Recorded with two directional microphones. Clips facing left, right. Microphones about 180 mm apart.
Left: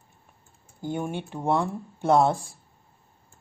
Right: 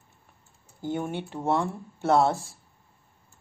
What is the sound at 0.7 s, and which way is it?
Speech, 15° left (ahead or behind).